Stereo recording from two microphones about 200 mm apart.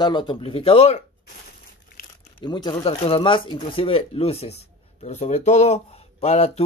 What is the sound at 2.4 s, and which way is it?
Speech, 20° left (ahead or behind).